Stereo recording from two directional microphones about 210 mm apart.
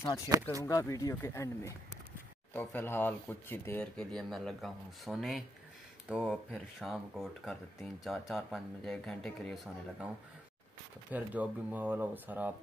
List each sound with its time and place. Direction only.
0.3 s speech: 15° right (ahead or behind)
0.7 s speech: 15° left (ahead or behind)
11.1 s speech: 10° right (ahead or behind)